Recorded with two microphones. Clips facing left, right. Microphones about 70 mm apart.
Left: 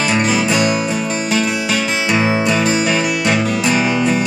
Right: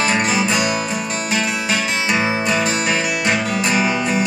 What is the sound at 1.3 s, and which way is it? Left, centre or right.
Music, centre.